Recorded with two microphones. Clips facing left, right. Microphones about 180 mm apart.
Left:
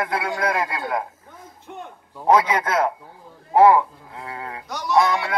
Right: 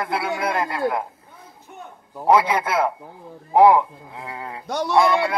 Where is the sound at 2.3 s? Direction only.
10° right (ahead or behind).